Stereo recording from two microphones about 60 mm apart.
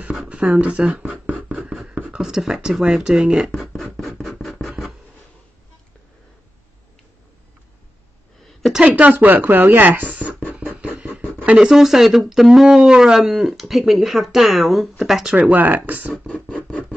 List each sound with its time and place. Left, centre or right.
0.3 s a sound: right
2.1 s speech: centre
3.5 s scratch: centre
8.7 s speech: right
10.6 s beatboxing: right
11.0 s a sound: right
11.5 s speech: centre
15.5 s speech: right
16.3 s scratch: centre